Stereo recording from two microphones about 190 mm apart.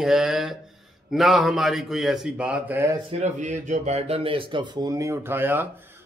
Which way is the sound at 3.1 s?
40° right (ahead or behind).